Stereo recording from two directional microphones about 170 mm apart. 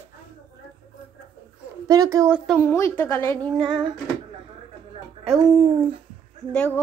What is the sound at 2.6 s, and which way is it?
Speech, 15° left (ahead or behind).